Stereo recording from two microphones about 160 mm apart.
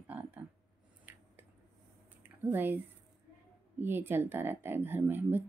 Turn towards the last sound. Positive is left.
turn(degrees=-10)  # may be behind; listen again after turning